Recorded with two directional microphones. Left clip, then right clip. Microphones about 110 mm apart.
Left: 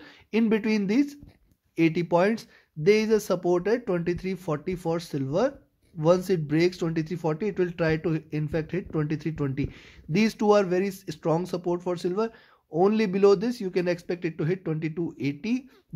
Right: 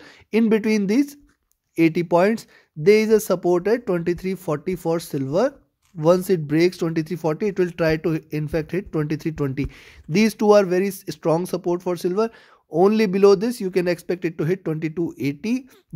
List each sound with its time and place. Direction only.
0.0 s speech: 50° right (ahead or behind)